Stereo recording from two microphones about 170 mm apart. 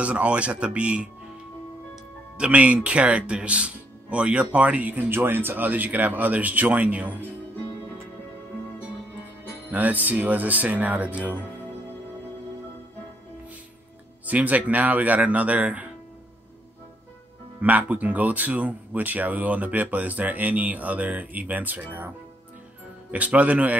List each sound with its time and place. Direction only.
0.0 s speech: 5° right (ahead or behind)
2.3 s speech: 5° right (ahead or behind)
9.7 s speech: 10° right (ahead or behind)
14.2 s speech: 10° right (ahead or behind)
17.6 s speech: 10° right (ahead or behind)
23.1 s speech: 10° right (ahead or behind)